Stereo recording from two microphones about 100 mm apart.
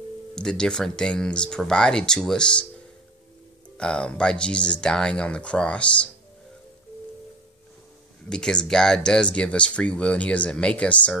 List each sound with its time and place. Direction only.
0.4 s speech: 5° left (ahead or behind)
3.7 s speech: 10° left (ahead or behind)
8.3 s speech: 5° left (ahead or behind)